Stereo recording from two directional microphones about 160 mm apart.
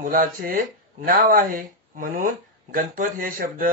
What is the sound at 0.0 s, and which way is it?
Speech, 60° right (ahead or behind).